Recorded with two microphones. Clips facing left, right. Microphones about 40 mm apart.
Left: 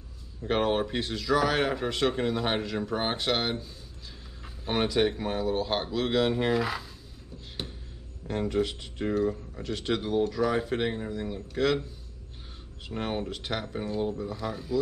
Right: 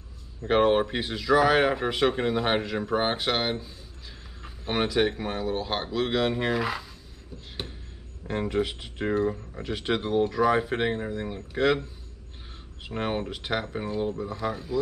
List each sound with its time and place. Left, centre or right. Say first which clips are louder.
0.5 s speech: right 5 dB; centre
7.3 s a sound: right 1 dB; centre
8.3 s speech: right 1 dB; centre
12.8 s speech: right 2 dB; centre